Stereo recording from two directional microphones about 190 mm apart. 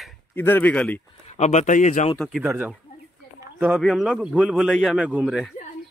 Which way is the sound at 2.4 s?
10° right (ahead or behind).